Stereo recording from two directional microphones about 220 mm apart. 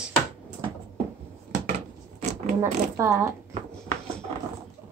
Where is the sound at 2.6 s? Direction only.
10° right (ahead or behind).